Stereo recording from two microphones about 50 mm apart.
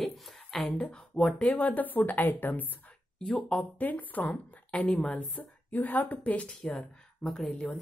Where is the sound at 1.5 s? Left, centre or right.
Left.